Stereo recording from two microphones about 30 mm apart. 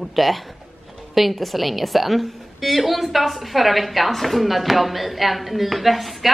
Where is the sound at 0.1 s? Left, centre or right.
Centre.